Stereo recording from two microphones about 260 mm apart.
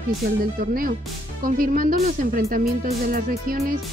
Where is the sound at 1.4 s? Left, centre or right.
Right.